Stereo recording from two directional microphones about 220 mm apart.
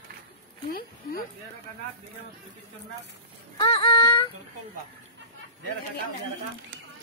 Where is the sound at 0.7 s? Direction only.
40° left (ahead or behind).